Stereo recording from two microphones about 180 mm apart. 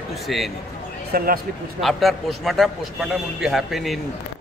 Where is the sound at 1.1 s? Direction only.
55° right (ahead or behind).